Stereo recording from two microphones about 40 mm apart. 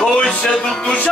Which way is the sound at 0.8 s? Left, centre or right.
Left.